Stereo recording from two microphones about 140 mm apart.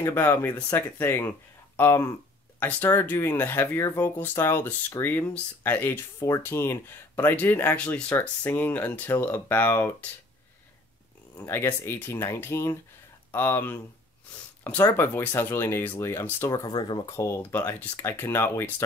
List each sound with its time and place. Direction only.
0.0 s speech: 15° left (ahead or behind)
11.3 s speech: 20° left (ahead or behind); by 17.1 s 35° left (ahead or behind)
17.1 s speech: 20° left (ahead or behind)